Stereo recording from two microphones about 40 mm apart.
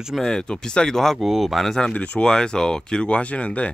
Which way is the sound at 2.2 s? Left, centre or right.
Centre.